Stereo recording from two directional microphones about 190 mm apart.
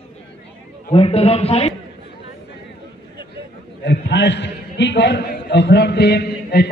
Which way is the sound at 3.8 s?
65° left (ahead or behind).